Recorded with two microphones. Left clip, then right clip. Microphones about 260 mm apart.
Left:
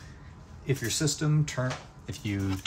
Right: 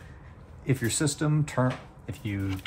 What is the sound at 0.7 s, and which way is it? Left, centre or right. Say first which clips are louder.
Speech: right 1 dB; right.